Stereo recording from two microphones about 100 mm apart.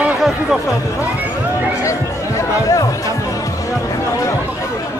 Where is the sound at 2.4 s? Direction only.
35° left (ahead or behind).